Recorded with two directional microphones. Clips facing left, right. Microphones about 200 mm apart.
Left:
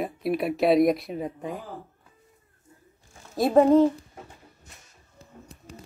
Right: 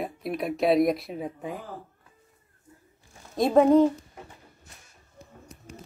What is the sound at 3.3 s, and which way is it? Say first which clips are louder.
Speech: left 1 dB; 5° left (ahead or behind).